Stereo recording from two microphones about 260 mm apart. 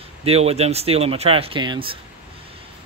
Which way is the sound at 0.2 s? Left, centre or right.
Right.